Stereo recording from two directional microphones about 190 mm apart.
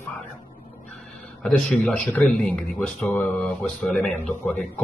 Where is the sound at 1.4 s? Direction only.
5° left (ahead or behind).